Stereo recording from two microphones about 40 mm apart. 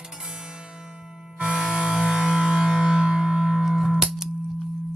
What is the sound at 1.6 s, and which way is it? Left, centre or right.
Music, right.